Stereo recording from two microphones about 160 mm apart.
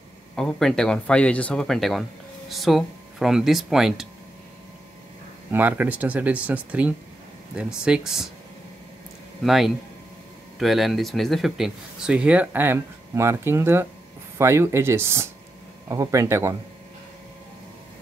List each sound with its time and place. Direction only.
0.4 s speech: centre (ahead or behind)
5.5 s speech: 10° right (ahead or behind)
9.4 s speech: centre (ahead or behind); by 16.5 s 20° right (ahead or behind)